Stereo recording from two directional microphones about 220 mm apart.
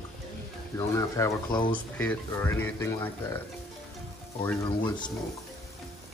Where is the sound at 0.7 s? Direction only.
15° left (ahead or behind).